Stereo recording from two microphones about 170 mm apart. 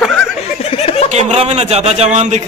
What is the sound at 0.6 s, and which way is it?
Snicker, 35° left (ahead or behind).